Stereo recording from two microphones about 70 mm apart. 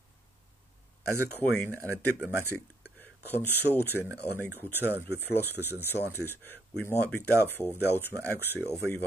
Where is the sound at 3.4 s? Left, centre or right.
Right.